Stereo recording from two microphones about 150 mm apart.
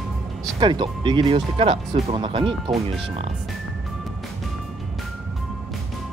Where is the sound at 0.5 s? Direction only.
35° right (ahead or behind).